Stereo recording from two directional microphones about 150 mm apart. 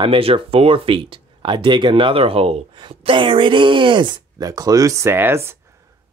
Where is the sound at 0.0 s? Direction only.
35° right (ahead or behind).